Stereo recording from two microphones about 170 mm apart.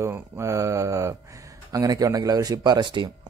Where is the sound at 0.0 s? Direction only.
15° right (ahead or behind).